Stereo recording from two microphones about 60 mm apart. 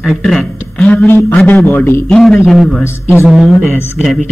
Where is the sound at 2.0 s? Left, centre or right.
Centre.